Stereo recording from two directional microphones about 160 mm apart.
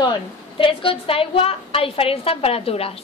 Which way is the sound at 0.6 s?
35° left (ahead or behind).